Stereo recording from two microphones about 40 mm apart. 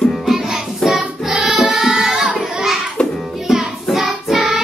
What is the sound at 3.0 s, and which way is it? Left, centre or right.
Music, left.